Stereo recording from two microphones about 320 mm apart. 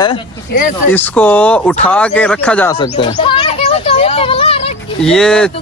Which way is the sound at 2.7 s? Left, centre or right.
Centre.